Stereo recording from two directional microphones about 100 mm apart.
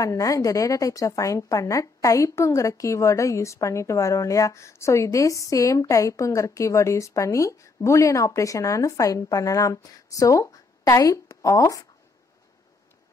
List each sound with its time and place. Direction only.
0.0 s a woman's voice: 35° left (ahead or behind)